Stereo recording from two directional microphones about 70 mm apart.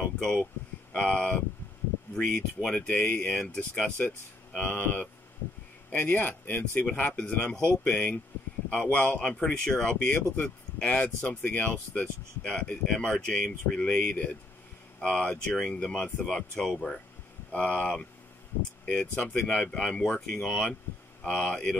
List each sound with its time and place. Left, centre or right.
0.2 s speech: centre